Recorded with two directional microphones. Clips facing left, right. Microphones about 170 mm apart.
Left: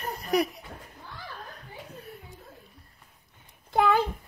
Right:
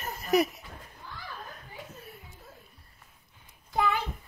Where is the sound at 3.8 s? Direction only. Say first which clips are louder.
Left 6 dB; 45° left (ahead or behind).